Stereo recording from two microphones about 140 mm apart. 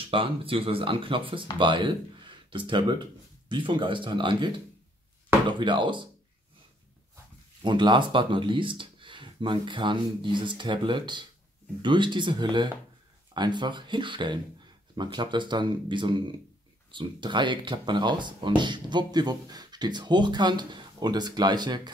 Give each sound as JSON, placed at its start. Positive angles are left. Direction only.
{"t": 0.0, "sound": "speech", "side_deg": -40}
{"t": 7.6, "sound": "speech", "side_deg": -35}